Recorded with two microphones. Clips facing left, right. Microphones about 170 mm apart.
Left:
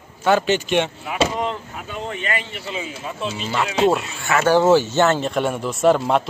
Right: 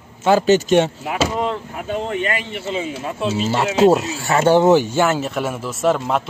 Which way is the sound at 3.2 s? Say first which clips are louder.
Right 5 dB; 35° right (ahead or behind).